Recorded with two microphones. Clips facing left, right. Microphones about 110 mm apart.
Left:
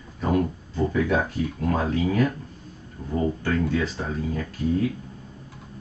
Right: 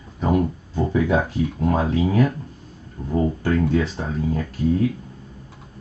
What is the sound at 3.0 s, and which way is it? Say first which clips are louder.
Speech: right 4 dB; centre (ahead or behind).